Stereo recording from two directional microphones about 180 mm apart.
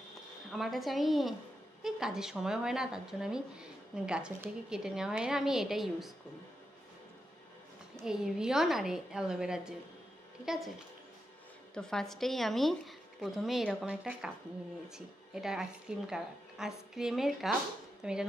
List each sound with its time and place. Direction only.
0.5 s speech: centre (ahead or behind)
8.0 s speech: 5° right (ahead or behind)
11.7 s speech: 5° left (ahead or behind)